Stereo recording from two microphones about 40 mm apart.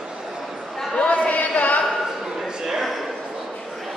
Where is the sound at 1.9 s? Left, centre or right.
Centre.